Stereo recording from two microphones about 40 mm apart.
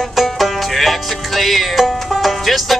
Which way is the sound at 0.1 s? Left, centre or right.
Centre.